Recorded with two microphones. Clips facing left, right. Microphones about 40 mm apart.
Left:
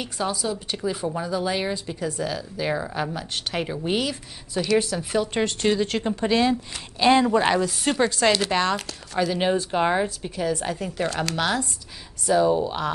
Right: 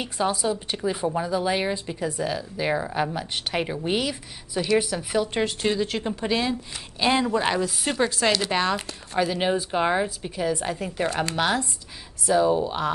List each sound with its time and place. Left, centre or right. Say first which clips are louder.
0.0 s speech: right 2 dB; centre
0.7 s speech: right 1 dB; centre
3.6 s a woman's voice: even; centre
8.7 s speech: even; right
9.3 s a woman's voice: left 1 dB; centre
10.2 s a woman's voice: even; centre